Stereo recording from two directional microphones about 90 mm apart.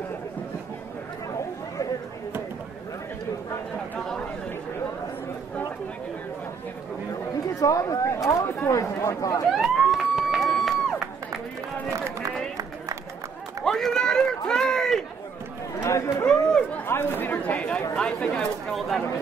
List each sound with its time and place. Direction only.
7.6 s speech: 40° left (ahead or behind)
9.5 s police car: centre (ahead or behind)
13.7 s run: 5° left (ahead or behind)
15.8 s run: 30° left (ahead or behind)
16.3 s a sound: 10° left (ahead or behind)
16.8 s chatter: 25° left (ahead or behind)
17.9 s speech: 10° left (ahead or behind)